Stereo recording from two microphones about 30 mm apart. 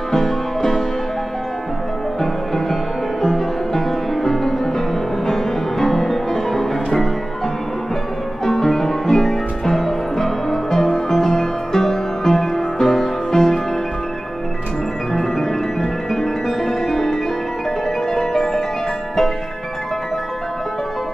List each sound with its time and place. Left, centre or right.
0.1 s music: centre
2.5 s music: centre
8.5 s music: centre
13.3 s music: centre
15.1 s music: centre